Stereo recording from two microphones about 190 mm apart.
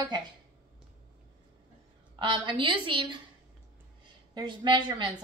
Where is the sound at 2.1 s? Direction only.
25° right (ahead or behind).